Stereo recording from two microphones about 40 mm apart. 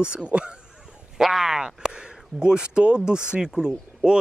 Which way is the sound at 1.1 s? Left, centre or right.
Centre.